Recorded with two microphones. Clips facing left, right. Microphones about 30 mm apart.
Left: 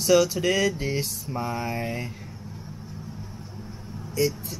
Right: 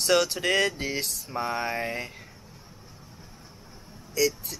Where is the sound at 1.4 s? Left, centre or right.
Right.